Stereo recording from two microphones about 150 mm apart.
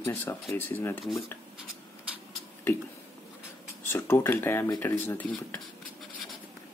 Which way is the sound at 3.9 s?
15° left (ahead or behind).